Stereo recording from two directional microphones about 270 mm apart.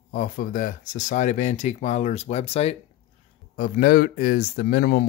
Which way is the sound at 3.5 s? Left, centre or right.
Left.